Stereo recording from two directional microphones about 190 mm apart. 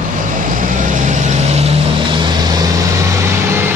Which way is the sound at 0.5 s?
40° right (ahead or behind).